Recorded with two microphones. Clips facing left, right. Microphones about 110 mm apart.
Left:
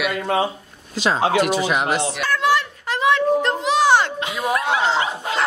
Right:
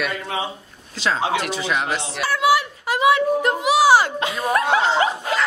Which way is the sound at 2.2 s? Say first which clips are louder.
Right 3 dB; 10° right (ahead or behind).